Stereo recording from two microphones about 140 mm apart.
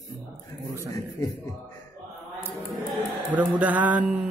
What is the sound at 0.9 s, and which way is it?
Speech, 25° left (ahead or behind).